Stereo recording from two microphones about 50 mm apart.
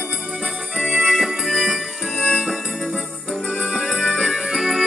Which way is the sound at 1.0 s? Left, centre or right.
Centre.